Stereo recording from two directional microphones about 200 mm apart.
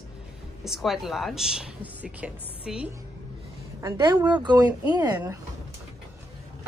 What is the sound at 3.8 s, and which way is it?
Speech, 20° right (ahead or behind).